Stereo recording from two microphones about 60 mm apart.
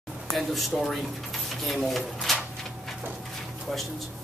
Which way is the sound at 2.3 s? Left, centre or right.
Centre.